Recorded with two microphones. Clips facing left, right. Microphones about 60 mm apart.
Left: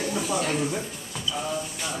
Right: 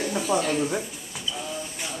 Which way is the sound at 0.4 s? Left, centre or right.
Centre.